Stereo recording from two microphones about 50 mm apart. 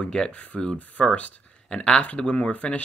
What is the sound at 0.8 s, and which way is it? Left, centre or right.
Speech, left.